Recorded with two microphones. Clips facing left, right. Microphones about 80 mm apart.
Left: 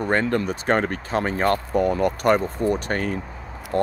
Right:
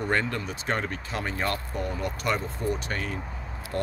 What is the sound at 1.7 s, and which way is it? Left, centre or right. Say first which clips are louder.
Speech: left 11 dB; left.